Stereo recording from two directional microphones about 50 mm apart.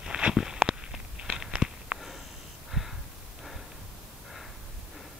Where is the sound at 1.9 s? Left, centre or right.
Centre.